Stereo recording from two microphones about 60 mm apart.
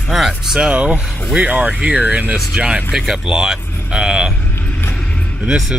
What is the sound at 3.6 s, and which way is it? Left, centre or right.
Cattle, left.